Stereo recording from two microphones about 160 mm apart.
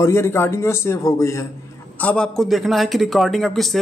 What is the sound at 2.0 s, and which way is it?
A man's voice, 5° left (ahead or behind).